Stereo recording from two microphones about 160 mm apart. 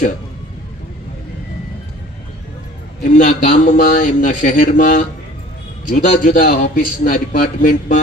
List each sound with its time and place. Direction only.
3.0 s a man's voice: 55° left (ahead or behind)